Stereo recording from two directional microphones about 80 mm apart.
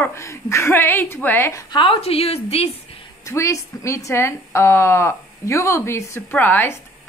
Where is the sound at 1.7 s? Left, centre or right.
Left.